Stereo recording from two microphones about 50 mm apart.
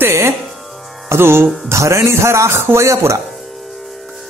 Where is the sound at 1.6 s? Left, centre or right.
Right.